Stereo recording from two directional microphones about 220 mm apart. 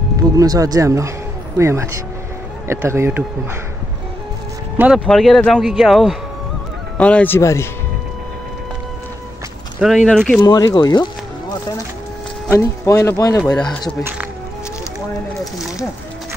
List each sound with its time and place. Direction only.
0.4 s speech: 15° right (ahead or behind)
4.7 s speech: 5° right (ahead or behind); by 7.6 s 10° left (ahead or behind)
9.8 s speech: centre (ahead or behind)
10.4 s music: 15° left (ahead or behind)
12.4 s speech: 10° left (ahead or behind)